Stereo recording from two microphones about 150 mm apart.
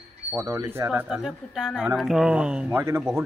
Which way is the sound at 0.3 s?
20° right (ahead or behind).